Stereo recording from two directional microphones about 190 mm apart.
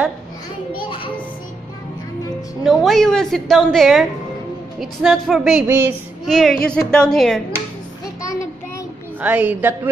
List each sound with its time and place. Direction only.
0.8 s music: 30° left (ahead or behind)
2.6 s a woman's voice: centre (ahead or behind)
6.2 s a woman's voice: centre (ahead or behind)
8.2 s child singing: 15° left (ahead or behind)
9.2 s a woman's voice: 10° right (ahead or behind)